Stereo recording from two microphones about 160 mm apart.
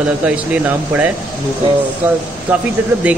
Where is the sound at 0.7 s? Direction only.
10° right (ahead or behind).